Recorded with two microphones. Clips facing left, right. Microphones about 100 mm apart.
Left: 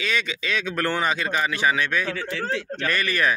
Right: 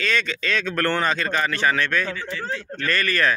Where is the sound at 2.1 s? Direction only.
90° left.